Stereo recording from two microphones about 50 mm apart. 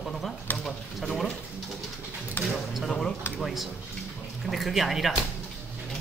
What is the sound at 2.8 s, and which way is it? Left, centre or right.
Speech, centre.